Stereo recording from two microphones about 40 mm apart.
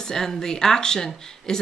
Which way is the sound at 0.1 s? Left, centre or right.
Centre.